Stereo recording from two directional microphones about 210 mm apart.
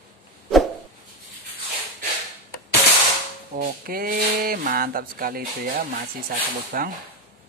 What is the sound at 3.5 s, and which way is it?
Speech, 45° right (ahead or behind).